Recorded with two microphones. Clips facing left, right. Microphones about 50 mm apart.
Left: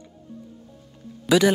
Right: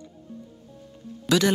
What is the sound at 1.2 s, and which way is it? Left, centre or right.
Speech, centre.